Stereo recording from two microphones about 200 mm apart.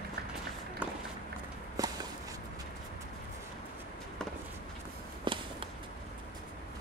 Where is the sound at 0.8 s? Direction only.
5° right (ahead or behind).